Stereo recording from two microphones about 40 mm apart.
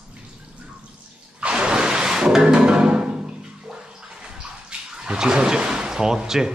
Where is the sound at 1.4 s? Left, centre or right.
Right.